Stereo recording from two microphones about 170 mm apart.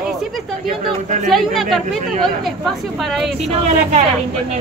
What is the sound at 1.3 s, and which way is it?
Speech, centre (ahead or behind).